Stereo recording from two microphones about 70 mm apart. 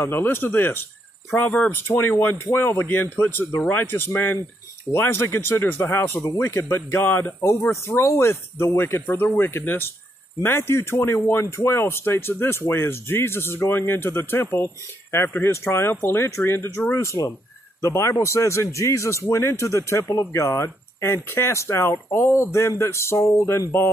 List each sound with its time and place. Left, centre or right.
0.0 s speech: left